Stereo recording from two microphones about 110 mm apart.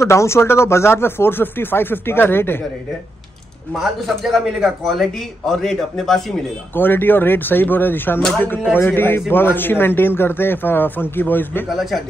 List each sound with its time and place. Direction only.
0.0 s speech: 25° left (ahead or behind)
4.2 s a man's voice: 5° right (ahead or behind)
6.7 s speech: 20° left (ahead or behind)
11.7 s a man's voice: centre (ahead or behind)